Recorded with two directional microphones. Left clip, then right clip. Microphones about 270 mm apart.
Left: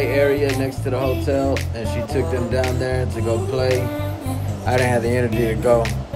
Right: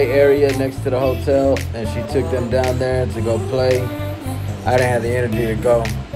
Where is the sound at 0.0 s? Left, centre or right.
Centre.